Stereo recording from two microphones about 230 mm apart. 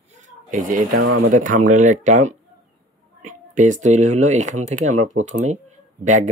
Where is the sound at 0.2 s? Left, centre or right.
Right.